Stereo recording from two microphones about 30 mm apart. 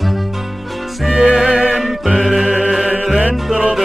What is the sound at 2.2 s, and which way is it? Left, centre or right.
Music, centre.